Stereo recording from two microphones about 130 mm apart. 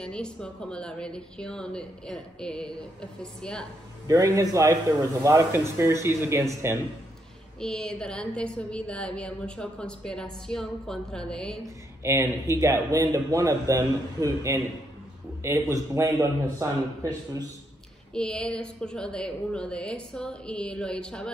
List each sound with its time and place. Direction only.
0.0 s a woman's voice: 5° left (ahead or behind)
4.1 s a man's voice: 25° right (ahead or behind)
7.6 s a woman's voice: 5° left (ahead or behind)
12.0 s a man's voice: 20° right (ahead or behind)
18.1 s a woman's voice: 5° left (ahead or behind)